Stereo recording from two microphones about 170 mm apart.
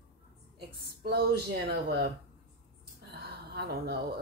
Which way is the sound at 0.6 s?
70° right (ahead or behind).